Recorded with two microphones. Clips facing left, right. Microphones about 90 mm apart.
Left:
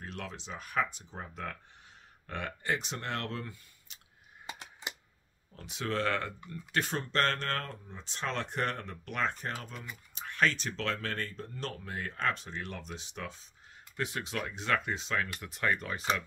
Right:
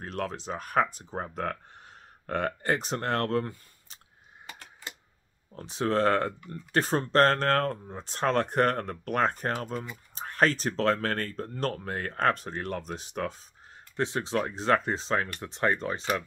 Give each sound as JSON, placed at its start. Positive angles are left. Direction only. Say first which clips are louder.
{"t": 0.0, "sound": "speech", "louder": "right 9 dB", "side_deg": -45}
{"t": 4.5, "sound": "typing", "louder": "left 1 dB", "side_deg": 20}
{"t": 5.5, "sound": "speech", "louder": "right 8 dB", "side_deg": -35}
{"t": 10.1, "sound": "a sound", "louder": "right 5 dB", "side_deg": -40}
{"t": 10.8, "sound": "speech", "louder": "right 10 dB", "side_deg": -45}
{"t": 13.9, "sound": "speech", "louder": "right 7 dB", "side_deg": -30}